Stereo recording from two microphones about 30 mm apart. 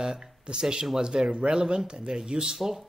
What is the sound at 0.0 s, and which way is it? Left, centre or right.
Speech, right.